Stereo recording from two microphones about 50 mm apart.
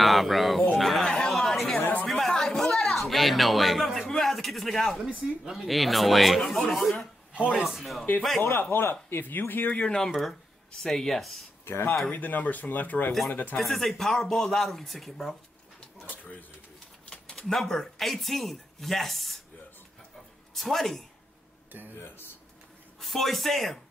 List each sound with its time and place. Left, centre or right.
0.0 s a sound: centre
1.1 s chatter: centre
2.0 s a sound: centre
4.1 s speech: centre
8.4 s speech: left
9.1 s speech: left
9.7 s speech: left
9.9 s speech: centre
11.6 s speech: left
12.1 s speech: left
13.6 s speech: centre
17.1 s speech: centre
20.5 s speech: centre
22.9 s speech: centre